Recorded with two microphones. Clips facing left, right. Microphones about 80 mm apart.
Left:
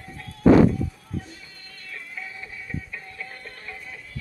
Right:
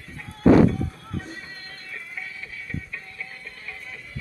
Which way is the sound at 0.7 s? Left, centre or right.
Right.